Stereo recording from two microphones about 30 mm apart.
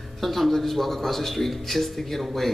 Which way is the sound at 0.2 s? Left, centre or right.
Centre.